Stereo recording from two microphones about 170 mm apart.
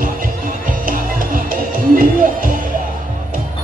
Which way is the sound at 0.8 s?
55° right (ahead or behind).